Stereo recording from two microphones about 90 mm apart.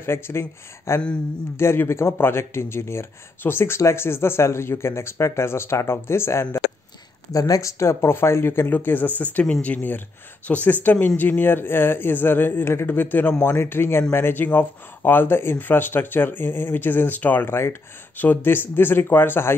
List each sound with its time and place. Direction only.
0.0 s speech: 30° left (ahead or behind)
7.3 s speech: 40° left (ahead or behind); by 19.5 s 25° left (ahead or behind)